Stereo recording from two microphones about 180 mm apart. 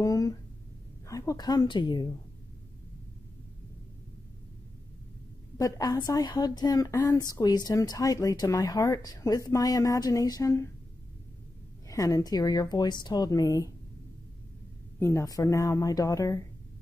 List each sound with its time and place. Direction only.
0.0 s a sound: 20° left (ahead or behind)
1.0 s a woman's voice: 20° left (ahead or behind)
5.6 s a woman's voice: 20° left (ahead or behind)
11.9 s a woman's voice: 20° left (ahead or behind)
15.0 s a woman's voice: 15° left (ahead or behind)